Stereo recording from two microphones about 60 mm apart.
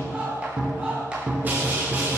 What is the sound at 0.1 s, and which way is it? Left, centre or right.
Music, centre.